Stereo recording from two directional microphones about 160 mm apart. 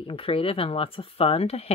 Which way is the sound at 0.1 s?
35° left (ahead or behind).